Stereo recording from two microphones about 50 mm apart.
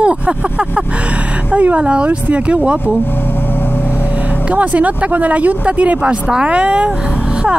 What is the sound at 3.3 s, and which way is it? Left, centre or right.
Vehicle, left.